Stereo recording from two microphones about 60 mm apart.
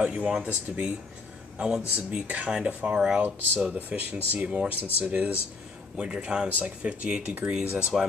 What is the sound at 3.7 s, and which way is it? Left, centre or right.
Speech, right.